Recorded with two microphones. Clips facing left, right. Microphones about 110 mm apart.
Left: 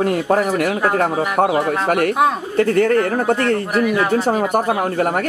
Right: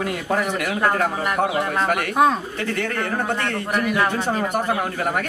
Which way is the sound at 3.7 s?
5° left (ahead or behind).